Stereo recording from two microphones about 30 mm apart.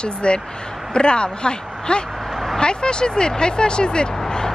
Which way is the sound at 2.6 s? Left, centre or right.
Left.